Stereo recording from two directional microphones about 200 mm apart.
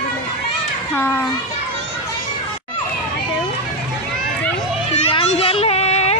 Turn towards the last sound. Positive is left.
turn(degrees=35)  # may be behind; listen again after turning